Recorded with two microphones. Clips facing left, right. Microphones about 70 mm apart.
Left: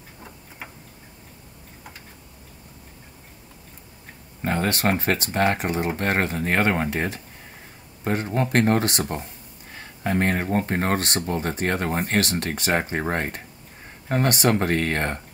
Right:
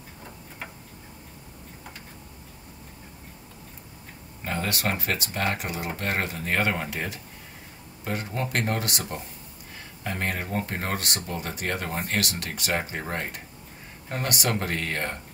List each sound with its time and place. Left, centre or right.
4.4 s speech: left